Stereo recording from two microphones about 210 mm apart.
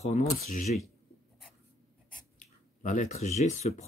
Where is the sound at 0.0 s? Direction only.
30° left (ahead or behind).